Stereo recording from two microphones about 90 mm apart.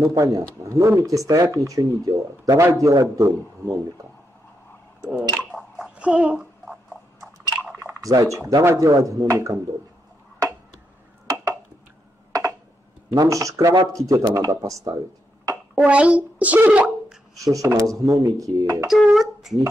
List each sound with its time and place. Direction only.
0.0 s speech: 40° right (ahead or behind)
5.1 s squish: centre (ahead or behind)
5.9 s a sound: 10° right (ahead or behind)
7.8 s drip: 35° right (ahead or behind)
8.5 s speech: 40° right (ahead or behind)
12.3 s a sound: 40° right (ahead or behind)
13.1 s speech: 40° right (ahead or behind)
15.7 s a child's voice: 15° right (ahead or behind)
17.5 s speech: 40° right (ahead or behind)
18.9 s speech: 5° right (ahead or behind)